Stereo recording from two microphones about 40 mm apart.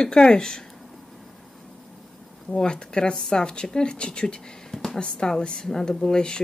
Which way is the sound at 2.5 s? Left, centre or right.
Left.